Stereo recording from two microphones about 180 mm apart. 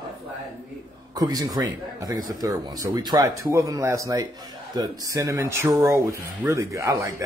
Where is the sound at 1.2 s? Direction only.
20° right (ahead or behind).